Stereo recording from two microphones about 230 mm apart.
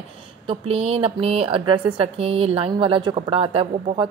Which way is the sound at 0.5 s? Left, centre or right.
Right.